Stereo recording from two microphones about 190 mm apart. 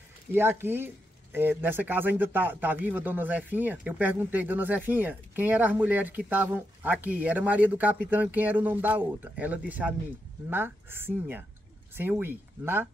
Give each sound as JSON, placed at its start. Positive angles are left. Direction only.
{"t": 0.3, "sound": "speech", "side_deg": -10}